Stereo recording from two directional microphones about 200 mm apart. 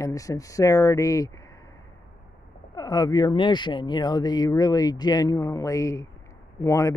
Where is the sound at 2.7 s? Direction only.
20° left (ahead or behind).